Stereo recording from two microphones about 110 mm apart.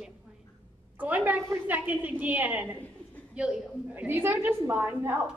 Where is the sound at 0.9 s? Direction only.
15° right (ahead or behind).